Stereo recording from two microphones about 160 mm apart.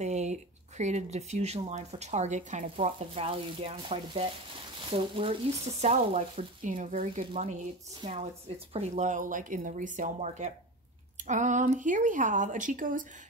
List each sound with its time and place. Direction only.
0.0 s speech: 45° right (ahead or behind)
2.7 s speech: 35° right (ahead or behind); by 13.0 s 55° right (ahead or behind)